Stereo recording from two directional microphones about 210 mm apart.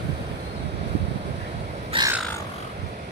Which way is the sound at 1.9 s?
25° right (ahead or behind).